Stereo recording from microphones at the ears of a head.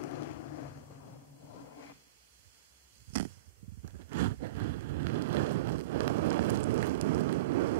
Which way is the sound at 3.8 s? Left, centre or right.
Right.